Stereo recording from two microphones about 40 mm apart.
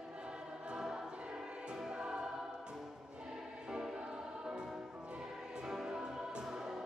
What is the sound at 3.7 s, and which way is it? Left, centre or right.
Music, centre.